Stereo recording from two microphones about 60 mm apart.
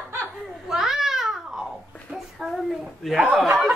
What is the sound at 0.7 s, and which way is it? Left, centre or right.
Babbling, centre.